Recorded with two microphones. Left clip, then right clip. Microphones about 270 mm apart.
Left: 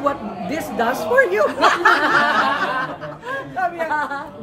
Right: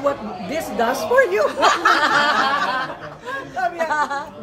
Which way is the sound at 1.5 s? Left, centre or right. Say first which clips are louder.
Left 1 dB; left.